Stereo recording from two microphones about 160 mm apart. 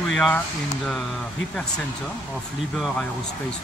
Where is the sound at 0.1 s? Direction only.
5° left (ahead or behind).